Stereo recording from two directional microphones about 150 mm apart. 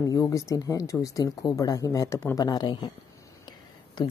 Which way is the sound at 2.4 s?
30° left (ahead or behind).